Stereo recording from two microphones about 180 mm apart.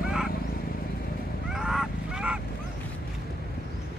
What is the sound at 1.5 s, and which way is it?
Honk, centre (ahead or behind).